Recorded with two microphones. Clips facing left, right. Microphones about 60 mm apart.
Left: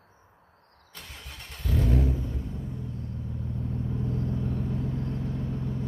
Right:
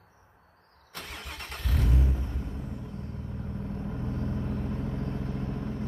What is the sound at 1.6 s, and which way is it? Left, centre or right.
Vehicle, right.